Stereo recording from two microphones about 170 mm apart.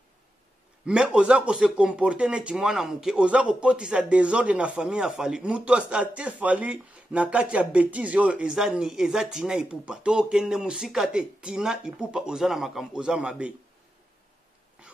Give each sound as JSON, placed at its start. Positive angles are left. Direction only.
{"t": 0.8, "sound": "speech", "side_deg": -5}